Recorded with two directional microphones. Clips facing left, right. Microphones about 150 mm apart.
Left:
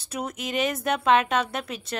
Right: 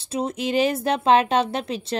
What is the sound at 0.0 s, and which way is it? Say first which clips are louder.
A woman's voice: right 6 dB; 25° right (ahead or behind).